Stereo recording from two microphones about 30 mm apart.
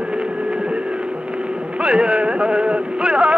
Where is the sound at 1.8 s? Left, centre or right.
Right.